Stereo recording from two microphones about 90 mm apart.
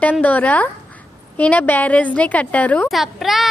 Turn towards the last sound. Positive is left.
turn(degrees=0)  # may be behind; listen again after turning